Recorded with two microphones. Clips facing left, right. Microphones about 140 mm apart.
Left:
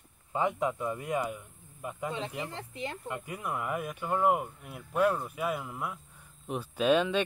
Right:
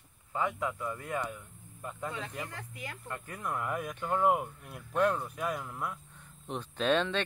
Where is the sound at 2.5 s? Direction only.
25° left (ahead or behind).